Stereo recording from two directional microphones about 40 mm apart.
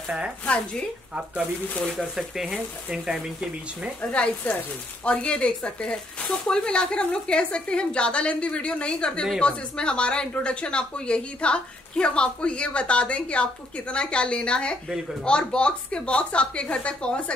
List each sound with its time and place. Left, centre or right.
2.1 s speech: centre
4.0 s speech: left